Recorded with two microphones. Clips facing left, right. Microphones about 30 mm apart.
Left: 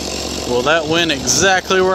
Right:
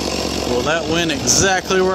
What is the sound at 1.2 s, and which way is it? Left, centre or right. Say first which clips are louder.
Speech: left 2 dB; centre.